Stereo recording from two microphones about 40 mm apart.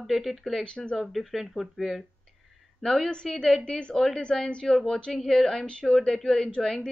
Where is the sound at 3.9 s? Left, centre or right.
Centre.